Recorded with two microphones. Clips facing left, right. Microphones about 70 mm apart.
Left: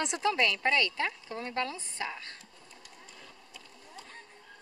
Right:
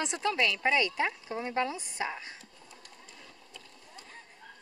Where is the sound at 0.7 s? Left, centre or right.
Centre.